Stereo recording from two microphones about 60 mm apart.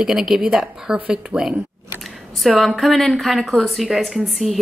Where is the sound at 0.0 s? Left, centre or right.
Centre.